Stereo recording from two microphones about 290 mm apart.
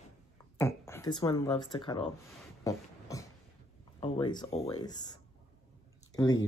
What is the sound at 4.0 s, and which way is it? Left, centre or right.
Speech, centre.